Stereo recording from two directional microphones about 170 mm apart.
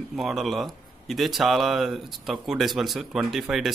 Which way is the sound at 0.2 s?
Centre (ahead or behind).